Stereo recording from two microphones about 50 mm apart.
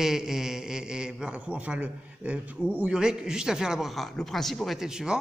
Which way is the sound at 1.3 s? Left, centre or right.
Right.